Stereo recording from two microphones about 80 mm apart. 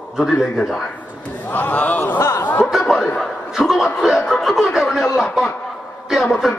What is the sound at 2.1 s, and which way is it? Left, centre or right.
Speech, left.